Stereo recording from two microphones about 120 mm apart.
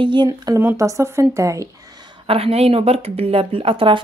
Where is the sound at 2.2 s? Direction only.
55° right (ahead or behind).